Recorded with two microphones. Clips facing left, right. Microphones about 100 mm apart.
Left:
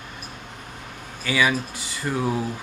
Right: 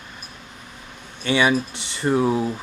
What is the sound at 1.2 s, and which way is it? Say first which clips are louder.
Speech: right 3 dB; 25° right (ahead or behind).